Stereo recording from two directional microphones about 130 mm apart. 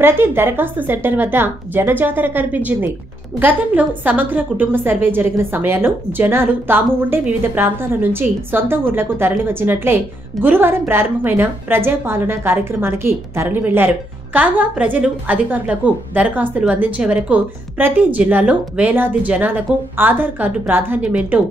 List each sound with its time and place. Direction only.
0.0 s a woman's voice: 15° right (ahead or behind)